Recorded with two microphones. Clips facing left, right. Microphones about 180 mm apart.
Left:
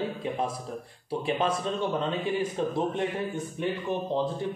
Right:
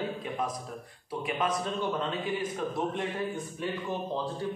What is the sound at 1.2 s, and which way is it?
Speech, 30° left (ahead or behind).